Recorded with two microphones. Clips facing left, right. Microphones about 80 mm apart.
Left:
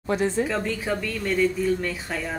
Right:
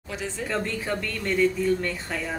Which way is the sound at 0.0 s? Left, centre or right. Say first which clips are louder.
Left 9 dB; left.